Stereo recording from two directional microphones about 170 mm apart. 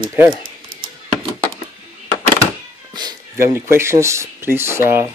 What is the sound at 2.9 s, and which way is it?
Speech, 25° right (ahead or behind).